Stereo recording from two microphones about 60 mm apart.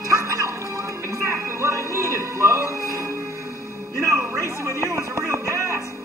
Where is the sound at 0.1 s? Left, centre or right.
Right.